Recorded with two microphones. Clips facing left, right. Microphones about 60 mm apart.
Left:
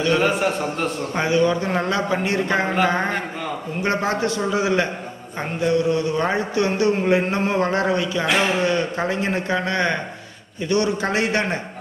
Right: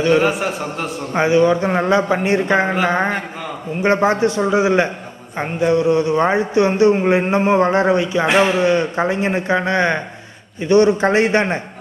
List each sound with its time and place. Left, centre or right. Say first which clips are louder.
0.2 s speech: right 1 dB; centre
1.1 s speech: right 6 dB; right
3.8 s speech: right 7 dB; right